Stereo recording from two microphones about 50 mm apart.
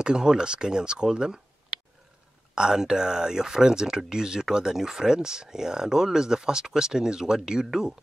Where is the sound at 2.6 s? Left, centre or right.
Centre.